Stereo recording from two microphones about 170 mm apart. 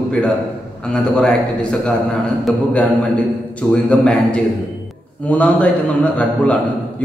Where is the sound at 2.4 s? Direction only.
Centre (ahead or behind).